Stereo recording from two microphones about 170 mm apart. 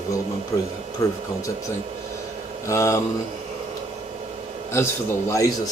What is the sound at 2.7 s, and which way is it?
Speech, 20° left (ahead or behind).